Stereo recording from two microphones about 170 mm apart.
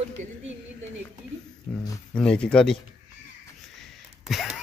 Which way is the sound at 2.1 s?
5° left (ahead or behind).